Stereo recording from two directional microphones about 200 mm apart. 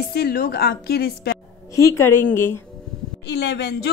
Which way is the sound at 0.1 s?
50° left (ahead or behind).